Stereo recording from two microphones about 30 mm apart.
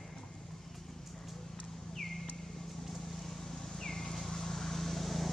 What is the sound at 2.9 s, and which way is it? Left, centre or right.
Vehicle, centre.